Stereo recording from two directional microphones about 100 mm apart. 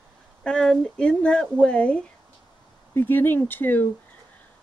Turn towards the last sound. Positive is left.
turn(degrees=20)  # may be behind; listen again after turning